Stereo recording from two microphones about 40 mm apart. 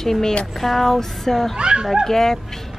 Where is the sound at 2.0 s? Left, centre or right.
Centre.